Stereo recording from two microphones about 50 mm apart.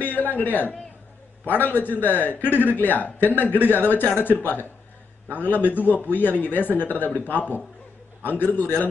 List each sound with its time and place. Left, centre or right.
0.0 s a man's voice: left